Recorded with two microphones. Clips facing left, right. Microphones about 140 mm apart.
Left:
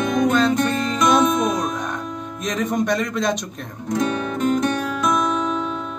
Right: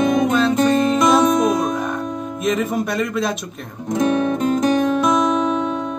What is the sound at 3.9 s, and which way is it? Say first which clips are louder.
Music: right 5 dB; 25° right (ahead or behind).